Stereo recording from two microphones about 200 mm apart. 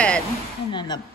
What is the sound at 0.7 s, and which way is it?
Speech, 20° left (ahead or behind).